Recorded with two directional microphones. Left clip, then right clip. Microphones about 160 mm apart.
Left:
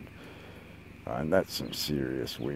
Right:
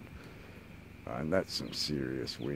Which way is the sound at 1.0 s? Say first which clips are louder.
Left 5 dB; 20° left (ahead or behind).